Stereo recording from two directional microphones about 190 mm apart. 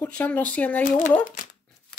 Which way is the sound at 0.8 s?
40° left (ahead or behind).